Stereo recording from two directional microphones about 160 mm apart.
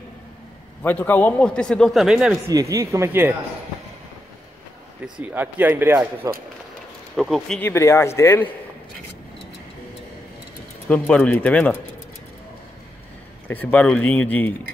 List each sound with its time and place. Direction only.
0.8 s a man's voice: 10° left (ahead or behind); by 2.3 s 5° right (ahead or behind)
2.4 s speech: 20° right (ahead or behind)
5.2 s speech: 10° right (ahead or behind)
7.2 s a man's voice: centre (ahead or behind)
7.7 s speech: 15° left (ahead or behind)
10.9 s speech: 10° left (ahead or behind)
13.5 s speech: 10° left (ahead or behind)